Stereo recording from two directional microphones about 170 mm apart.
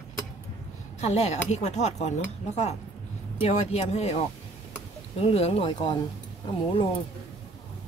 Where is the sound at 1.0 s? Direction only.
40° left (ahead or behind).